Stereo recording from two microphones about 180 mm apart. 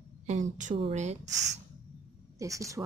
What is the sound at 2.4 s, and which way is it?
Speech, 15° right (ahead or behind).